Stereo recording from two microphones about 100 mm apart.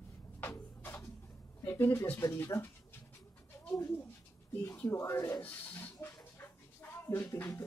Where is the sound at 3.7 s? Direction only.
20° left (ahead or behind).